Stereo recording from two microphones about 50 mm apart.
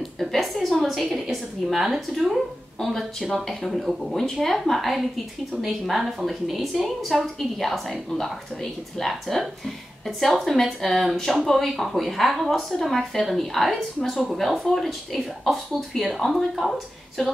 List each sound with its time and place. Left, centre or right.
0.2 s a woman's voice: centre